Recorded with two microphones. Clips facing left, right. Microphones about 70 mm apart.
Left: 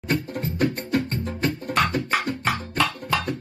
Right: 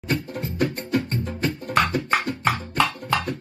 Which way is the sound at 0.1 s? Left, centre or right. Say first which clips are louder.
Left 1 dB; left.